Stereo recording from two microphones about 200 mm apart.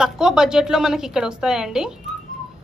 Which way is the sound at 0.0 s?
5° right (ahead or behind).